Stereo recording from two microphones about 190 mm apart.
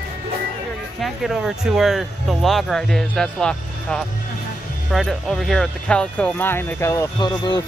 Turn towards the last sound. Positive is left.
turn(degrees=20)  # may be behind; listen again after turning